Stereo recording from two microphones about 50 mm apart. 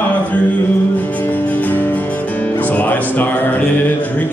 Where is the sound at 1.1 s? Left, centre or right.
Left.